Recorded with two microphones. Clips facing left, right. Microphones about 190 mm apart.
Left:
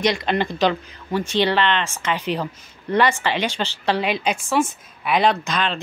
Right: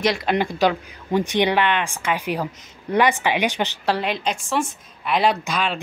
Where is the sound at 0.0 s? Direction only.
5° right (ahead or behind).